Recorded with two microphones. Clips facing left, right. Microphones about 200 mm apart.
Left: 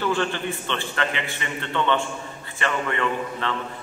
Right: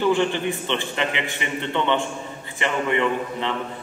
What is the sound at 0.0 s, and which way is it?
A man's voice, 15° right (ahead or behind).